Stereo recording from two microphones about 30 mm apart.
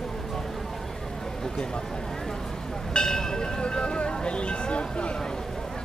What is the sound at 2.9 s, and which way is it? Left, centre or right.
Speech, left.